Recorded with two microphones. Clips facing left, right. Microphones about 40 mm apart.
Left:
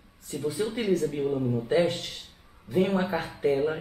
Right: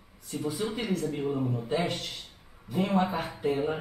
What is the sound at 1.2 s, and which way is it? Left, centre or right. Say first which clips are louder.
Speech: left 3 dB; centre.